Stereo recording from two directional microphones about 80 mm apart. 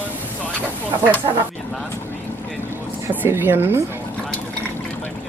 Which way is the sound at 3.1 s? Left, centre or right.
Right.